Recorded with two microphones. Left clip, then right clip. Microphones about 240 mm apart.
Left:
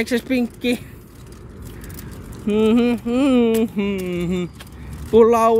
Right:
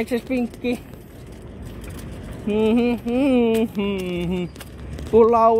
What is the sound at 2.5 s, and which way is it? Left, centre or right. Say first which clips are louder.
Speech: left 2 dB; centre.